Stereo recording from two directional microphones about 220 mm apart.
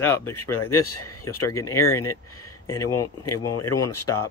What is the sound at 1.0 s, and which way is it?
Speech, 90° left.